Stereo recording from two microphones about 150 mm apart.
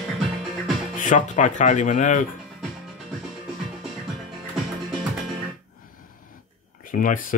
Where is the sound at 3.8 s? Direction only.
Centre (ahead or behind).